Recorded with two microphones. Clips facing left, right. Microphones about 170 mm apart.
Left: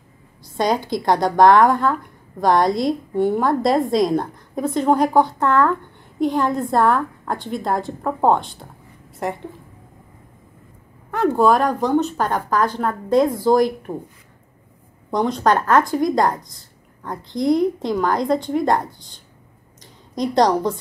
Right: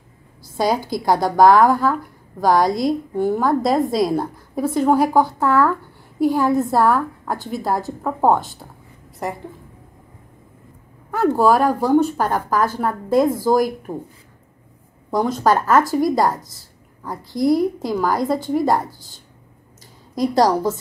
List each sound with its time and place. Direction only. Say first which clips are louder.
0.4 s a woman's voice: even; 5° right (ahead or behind)
11.1 s a woman's voice: even; 5° right (ahead or behind)
15.0 s a woman's voice: right 1 dB; 5° right (ahead or behind)
20.2 s a woman's voice: right 1 dB; 5° right (ahead or behind)